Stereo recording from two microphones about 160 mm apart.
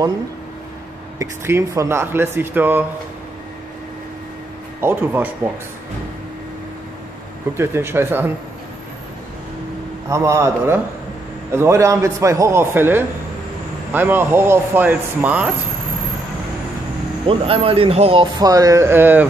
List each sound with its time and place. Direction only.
1.2 s speech: 15° right (ahead or behind)
4.7 s speech: 10° right (ahead or behind)
7.5 s speech: 15° right (ahead or behind)
10.0 s speech: 20° right (ahead or behind)
17.3 s speech: 35° right (ahead or behind); by 19.2 s 10° right (ahead or behind)